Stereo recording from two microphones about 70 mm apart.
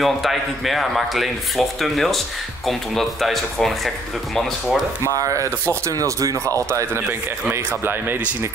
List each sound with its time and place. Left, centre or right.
0.0 s speech: centre
5.0 s speech: right
6.7 s speech: right